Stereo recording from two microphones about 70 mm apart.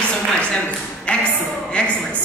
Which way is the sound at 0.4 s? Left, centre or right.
Centre.